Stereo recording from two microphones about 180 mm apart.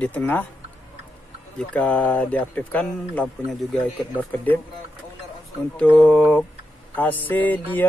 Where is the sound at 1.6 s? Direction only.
5° left (ahead or behind).